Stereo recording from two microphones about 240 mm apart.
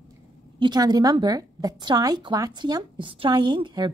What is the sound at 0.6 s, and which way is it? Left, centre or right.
A woman's voice, centre.